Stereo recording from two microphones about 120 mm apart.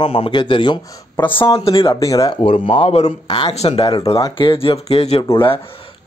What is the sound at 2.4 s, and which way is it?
Speech, 50° left (ahead or behind).